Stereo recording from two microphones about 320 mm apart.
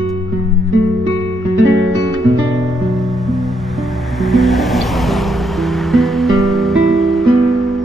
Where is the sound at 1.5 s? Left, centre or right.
Centre.